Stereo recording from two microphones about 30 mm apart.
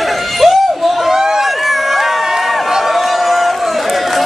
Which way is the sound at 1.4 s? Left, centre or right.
Centre.